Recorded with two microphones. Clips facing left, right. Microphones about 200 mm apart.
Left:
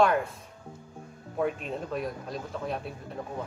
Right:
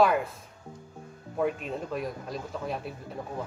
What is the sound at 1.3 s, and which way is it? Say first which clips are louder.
Speech: right 1 dB; centre (ahead or behind).